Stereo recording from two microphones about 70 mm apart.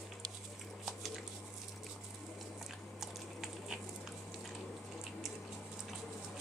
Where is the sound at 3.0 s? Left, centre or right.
Centre.